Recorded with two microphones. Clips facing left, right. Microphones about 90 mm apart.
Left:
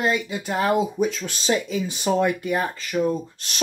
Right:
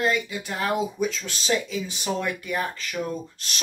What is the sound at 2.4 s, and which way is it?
Speech, 25° left (ahead or behind).